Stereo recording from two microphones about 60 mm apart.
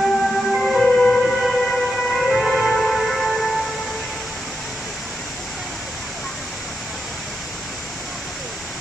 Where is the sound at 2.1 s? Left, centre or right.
Centre.